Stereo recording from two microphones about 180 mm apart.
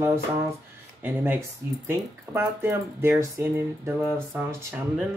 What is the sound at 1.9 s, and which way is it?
Speech, 15° right (ahead or behind).